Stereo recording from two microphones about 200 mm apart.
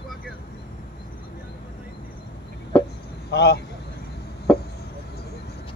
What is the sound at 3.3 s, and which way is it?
Speech, 60° left (ahead or behind).